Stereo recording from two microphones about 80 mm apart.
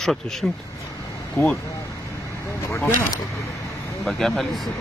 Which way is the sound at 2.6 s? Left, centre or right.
Left.